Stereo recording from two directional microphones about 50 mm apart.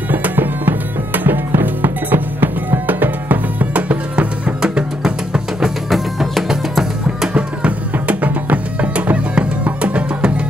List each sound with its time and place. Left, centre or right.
0.1 s music: right
4.6 s music: centre
5.9 s music: centre
7.3 s music: right